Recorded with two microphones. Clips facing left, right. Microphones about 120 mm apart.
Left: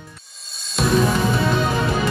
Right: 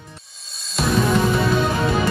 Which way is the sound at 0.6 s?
Centre (ahead or behind).